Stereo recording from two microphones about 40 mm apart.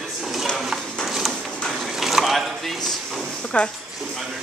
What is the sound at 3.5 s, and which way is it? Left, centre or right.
Speech, left.